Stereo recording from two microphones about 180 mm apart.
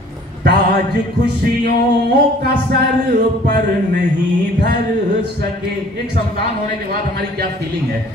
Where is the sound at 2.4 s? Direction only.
60° right (ahead or behind).